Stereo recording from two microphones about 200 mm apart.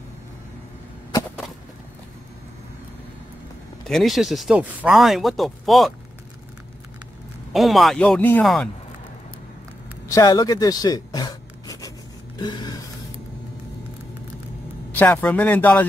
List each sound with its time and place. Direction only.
3.8 s speech: centre (ahead or behind)
7.5 s speech: centre (ahead or behind)
10.0 s writing: 15° left (ahead or behind)
12.4 s a sound: 20° left (ahead or behind)
15.0 s speech: 5° left (ahead or behind)